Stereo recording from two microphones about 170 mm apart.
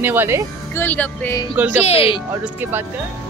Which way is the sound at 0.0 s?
10° right (ahead or behind).